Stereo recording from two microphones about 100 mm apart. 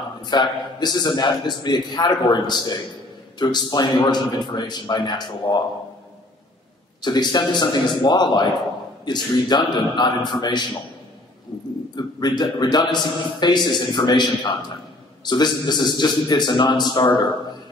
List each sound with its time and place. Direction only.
0.2 s a man's voice: 45° left (ahead or behind)
7.0 s a man's voice: 45° left (ahead or behind)
11.9 s a man's voice: 45° left (ahead or behind)